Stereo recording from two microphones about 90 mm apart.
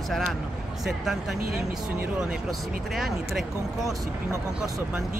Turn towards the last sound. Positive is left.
turn(degrees=0)  # may be behind; listen again after turning